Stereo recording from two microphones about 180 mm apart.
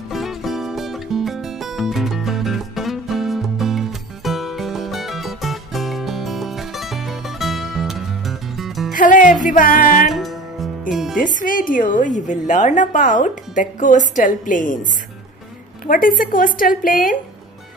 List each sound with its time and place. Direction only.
0.1 s music: centre (ahead or behind)
8.9 s music: 45° left (ahead or behind)
10.1 s music: centre (ahead or behind)
11.3 s a woman's voice: 50° left (ahead or behind)
15.9 s a woman's voice: 50° left (ahead or behind)